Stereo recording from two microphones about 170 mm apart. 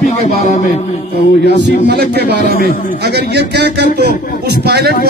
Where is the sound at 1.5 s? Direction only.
70° right (ahead or behind).